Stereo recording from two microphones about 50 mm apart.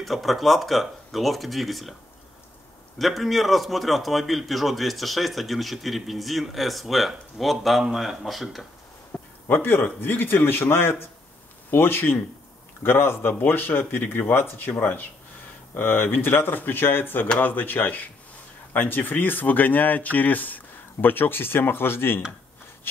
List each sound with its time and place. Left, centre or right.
0.0 s a man's voice: centre
3.0 s a man's voice: centre
9.1 s a sound: left
9.5 s speech: left
15.7 s speech: left